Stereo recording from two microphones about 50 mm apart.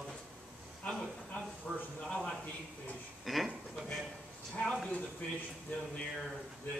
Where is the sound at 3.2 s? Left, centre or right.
Centre.